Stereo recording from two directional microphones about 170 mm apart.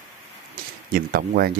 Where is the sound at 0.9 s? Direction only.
60° right (ahead or behind).